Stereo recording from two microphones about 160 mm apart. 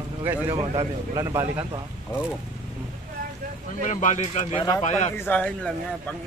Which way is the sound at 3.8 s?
50° left (ahead or behind).